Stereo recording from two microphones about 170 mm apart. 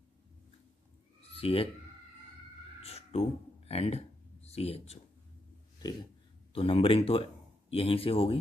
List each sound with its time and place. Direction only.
1.3 s speech: 35° left (ahead or behind)
2.8 s a sound: 35° left (ahead or behind)
6.5 s speech: 35° left (ahead or behind)